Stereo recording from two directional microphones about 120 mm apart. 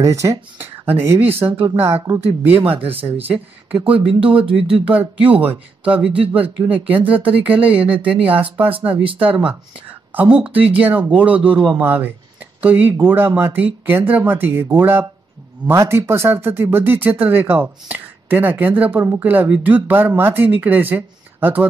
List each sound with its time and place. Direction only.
0.0 s speech: 25° right (ahead or behind)
2.8 s speech: 50° right (ahead or behind)
4.8 s speech: 10° right (ahead or behind)
6.0 s speech: 50° right (ahead or behind)
6.3 s speech: 15° right (ahead or behind)
9.0 s speech: 45° right (ahead or behind)
9.5 s speech: 10° right (ahead or behind)